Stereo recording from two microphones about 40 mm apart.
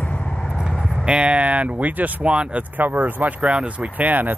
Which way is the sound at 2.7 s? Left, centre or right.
Right.